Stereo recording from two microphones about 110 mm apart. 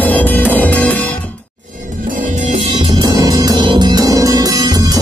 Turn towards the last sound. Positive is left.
turn(degrees=-35)  # may be behind; listen again after turning